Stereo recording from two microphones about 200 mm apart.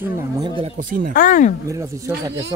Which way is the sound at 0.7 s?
40° right (ahead or behind).